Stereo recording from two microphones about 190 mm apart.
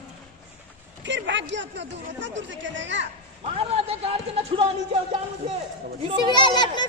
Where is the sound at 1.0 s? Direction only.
70° right (ahead or behind).